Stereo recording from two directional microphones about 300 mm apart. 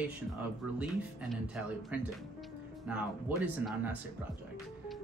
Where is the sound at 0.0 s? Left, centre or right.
Centre.